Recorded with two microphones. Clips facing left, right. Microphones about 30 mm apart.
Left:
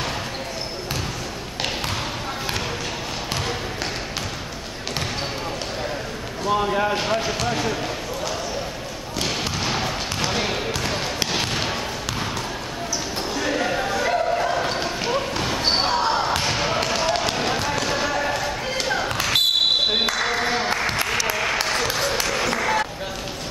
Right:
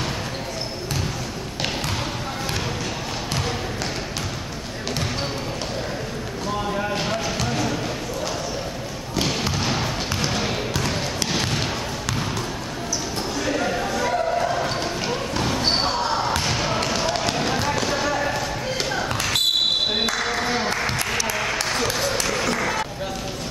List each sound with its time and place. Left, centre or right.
6.5 s a sound: left
7.2 s basketball bounce: centre
9.1 s basketball bounce: centre
13.4 s basketball bounce: centre
21.0 s applause: centre